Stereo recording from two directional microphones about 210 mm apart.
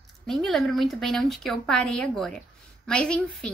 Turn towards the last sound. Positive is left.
turn(degrees=5)  # may be behind; listen again after turning